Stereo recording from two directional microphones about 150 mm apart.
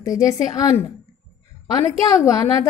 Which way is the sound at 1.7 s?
25° left (ahead or behind).